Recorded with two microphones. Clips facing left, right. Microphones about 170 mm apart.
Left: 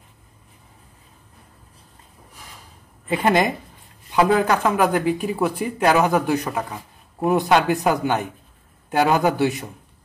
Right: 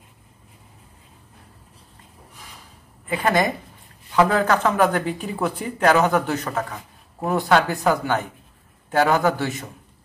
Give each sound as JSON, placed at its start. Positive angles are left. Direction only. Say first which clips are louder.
{"t": 3.1, "sound": "a woman's voice", "louder": "left 2 dB", "side_deg": 25}